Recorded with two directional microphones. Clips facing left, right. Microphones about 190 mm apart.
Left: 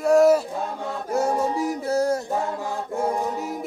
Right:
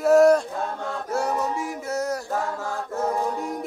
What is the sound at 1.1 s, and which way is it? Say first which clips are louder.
Music: left 3 dB; 25° left (ahead or behind).